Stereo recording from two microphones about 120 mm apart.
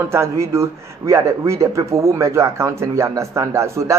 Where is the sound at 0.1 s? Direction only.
25° right (ahead or behind).